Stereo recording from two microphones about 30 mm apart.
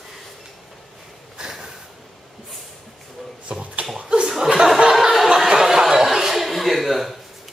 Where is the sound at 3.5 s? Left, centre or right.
Right.